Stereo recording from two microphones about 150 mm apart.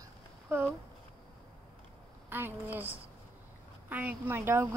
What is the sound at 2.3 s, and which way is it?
Speech, 15° right (ahead or behind).